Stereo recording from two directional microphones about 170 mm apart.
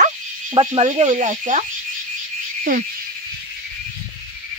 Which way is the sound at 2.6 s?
50° right (ahead or behind).